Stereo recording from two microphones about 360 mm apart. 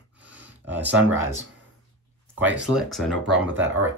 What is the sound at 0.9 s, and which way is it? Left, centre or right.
Speech, centre.